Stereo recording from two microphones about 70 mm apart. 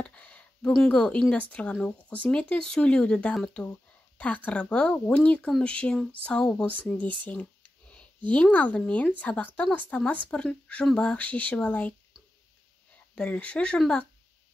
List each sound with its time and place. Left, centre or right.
0.0 s a sound: centre
0.9 s speech: centre
13.1 s speech: centre